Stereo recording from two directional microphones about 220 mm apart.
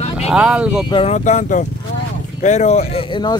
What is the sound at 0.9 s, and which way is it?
Speech, 30° left (ahead or behind).